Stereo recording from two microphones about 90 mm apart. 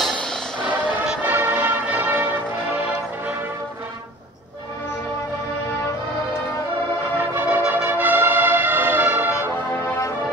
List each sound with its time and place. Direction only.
0.7 s music: 10° right (ahead or behind)
1.3 s music: 20° right (ahead or behind)
7.2 s music: 25° right (ahead or behind)
7.7 s brass instrument: 20° right (ahead or behind)